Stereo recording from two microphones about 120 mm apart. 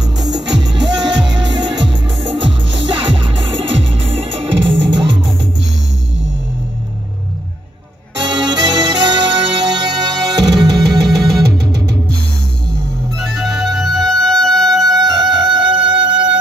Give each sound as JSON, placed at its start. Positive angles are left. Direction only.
{"t": 0.0, "sound": "music", "side_deg": -5}
{"t": 0.6, "sound": "music", "side_deg": -40}
{"t": 8.5, "sound": "music", "side_deg": -35}
{"t": 10.9, "sound": "music", "side_deg": 0}
{"t": 11.6, "sound": "music", "side_deg": -35}
{"t": 13.4, "sound": "music", "side_deg": 0}
{"t": 14.9, "sound": "music", "side_deg": -35}